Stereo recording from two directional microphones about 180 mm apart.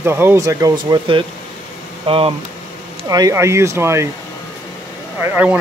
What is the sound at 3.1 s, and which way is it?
Speech, 20° right (ahead or behind).